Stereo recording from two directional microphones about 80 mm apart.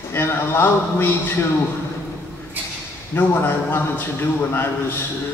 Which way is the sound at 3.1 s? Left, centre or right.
Left.